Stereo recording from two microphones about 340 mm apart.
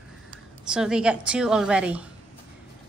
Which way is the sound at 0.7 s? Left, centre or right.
Centre.